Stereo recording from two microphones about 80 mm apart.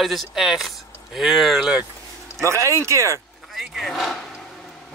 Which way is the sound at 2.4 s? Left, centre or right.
Right.